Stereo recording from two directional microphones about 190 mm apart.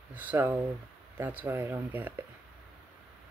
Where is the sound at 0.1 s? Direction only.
10° right (ahead or behind).